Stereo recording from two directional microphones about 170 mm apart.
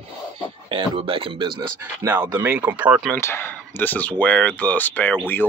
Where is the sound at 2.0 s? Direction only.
10° right (ahead or behind).